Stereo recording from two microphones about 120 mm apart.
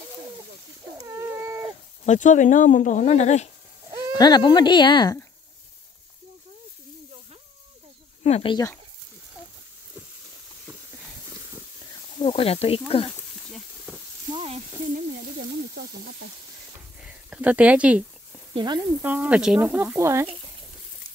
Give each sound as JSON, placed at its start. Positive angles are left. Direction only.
{"t": 1.0, "sound": "cat", "side_deg": -25}
{"t": 2.0, "sound": "speech", "side_deg": 90}
{"t": 4.1, "sound": "speech", "side_deg": 35}
{"t": 8.4, "sound": "speech", "side_deg": 45}
{"t": 12.2, "sound": "speech", "side_deg": 55}
{"t": 13.5, "sound": "a sound", "side_deg": 0}
{"t": 17.0, "sound": "speech", "side_deg": -10}
{"t": 18.5, "sound": "speech", "side_deg": -35}
{"t": 18.8, "sound": "speech", "side_deg": -15}